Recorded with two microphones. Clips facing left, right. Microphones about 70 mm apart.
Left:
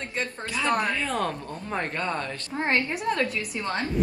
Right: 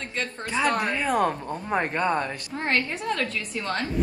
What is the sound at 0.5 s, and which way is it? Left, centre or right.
Speech, right.